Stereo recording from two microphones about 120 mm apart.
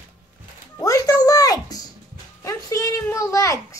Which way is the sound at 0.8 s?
30° left (ahead or behind).